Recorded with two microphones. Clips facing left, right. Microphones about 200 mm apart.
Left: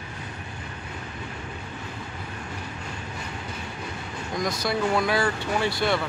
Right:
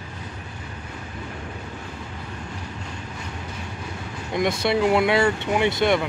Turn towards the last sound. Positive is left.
turn(degrees=-20)  # may be behind; listen again after turning